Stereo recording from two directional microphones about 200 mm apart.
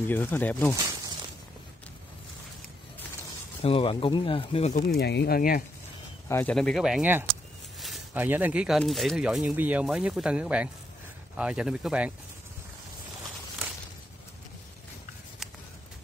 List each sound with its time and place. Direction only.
0.1 s speech: 10° left (ahead or behind)
3.6 s speech: 30° left (ahead or behind); by 5.6 s 45° left (ahead or behind)
6.2 s speech: 15° left (ahead or behind)
6.5 s speech: centre (ahead or behind)